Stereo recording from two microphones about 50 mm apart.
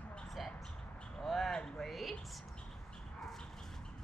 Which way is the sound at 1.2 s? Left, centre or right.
Centre.